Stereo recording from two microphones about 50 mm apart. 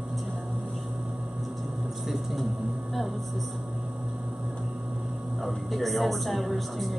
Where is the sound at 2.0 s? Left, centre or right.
Centre.